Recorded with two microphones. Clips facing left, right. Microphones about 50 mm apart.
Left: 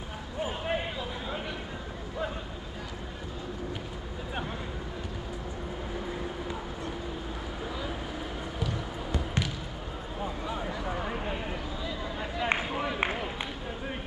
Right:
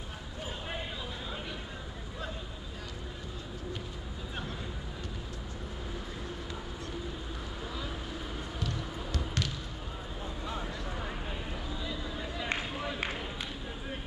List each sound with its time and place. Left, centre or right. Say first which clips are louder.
0.4 s vehicle: left 8 dB; left
8.5 s basketball bounce: left 3 dB; centre
10.4 s a sound: left 4 dB; centre
12.2 s run: left 7 dB; left